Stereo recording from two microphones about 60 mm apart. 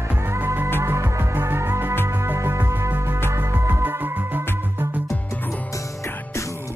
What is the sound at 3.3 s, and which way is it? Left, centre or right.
Music, right.